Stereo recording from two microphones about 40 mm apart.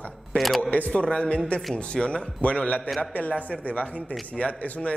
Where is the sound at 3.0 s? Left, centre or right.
Left.